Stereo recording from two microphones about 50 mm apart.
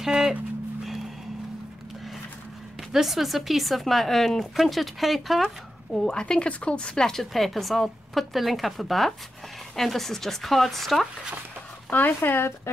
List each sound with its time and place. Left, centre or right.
0.0 s dog: centre
2.9 s speech: centre
5.4 s speech: centre
6.1 s speech: centre
7.1 s speech: centre
11.9 s speech: left